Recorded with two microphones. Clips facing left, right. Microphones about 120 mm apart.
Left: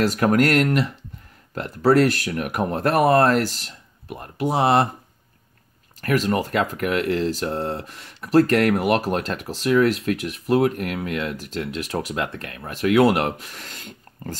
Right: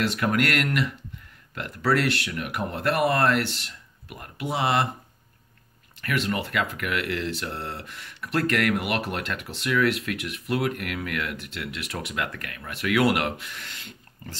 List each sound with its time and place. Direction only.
0.0 s speech: 40° left (ahead or behind)
5.9 s speech: 40° left (ahead or behind)